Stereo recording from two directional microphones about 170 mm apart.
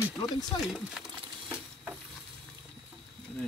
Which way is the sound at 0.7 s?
Centre (ahead or behind).